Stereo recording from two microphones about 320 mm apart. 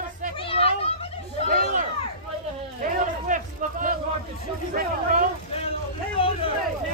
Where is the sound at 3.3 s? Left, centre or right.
Right.